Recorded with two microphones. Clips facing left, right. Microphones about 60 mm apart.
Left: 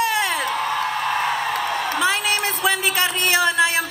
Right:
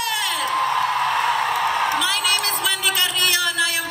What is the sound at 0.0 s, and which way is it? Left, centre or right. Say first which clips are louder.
Whoop: left 4 dB; left.